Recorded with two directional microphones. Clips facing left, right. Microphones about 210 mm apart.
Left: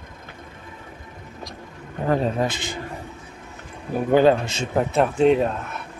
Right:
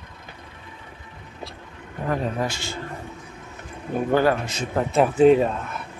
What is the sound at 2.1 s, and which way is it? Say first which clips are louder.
Speech: left 4 dB; 25° left (ahead or behind).